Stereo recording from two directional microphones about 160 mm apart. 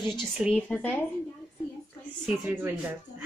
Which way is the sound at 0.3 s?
5° right (ahead or behind).